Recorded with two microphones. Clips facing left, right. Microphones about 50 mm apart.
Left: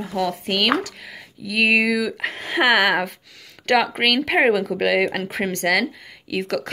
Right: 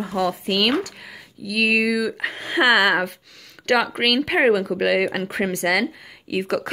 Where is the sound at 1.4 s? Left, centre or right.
Centre.